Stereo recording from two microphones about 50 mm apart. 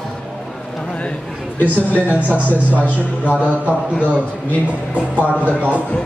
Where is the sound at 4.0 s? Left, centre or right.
Left.